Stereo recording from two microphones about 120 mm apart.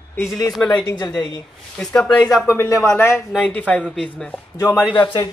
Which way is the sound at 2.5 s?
25° left (ahead or behind).